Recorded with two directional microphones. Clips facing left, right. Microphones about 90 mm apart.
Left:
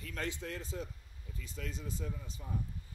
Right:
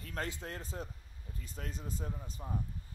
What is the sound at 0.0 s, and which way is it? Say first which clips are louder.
Speech: even; 40° right (ahead or behind).